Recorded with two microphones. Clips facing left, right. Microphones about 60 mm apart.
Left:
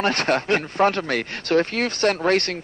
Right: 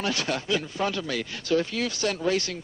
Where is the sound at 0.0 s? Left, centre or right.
Left.